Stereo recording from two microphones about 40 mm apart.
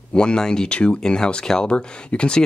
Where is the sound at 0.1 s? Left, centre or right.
Left.